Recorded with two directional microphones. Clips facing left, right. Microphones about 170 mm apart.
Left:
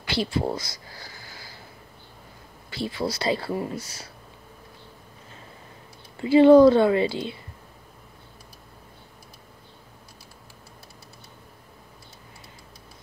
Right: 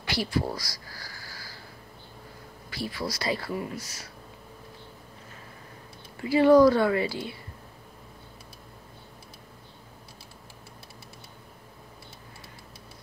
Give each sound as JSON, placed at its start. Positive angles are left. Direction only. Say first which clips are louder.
{"t": 0.1, "sound": "speech", "louder": "left 3 dB", "side_deg": 25}
{"t": 2.7, "sound": "speech", "louder": "left 5 dB", "side_deg": 25}
{"t": 6.2, "sound": "speech", "louder": "left 5 dB", "side_deg": 25}